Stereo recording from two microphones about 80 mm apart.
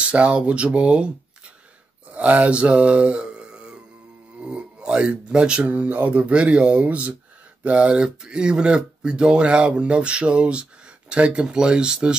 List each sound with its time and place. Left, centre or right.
0.0 s speech: centre
2.1 s mantra: centre
4.4 s speech: centre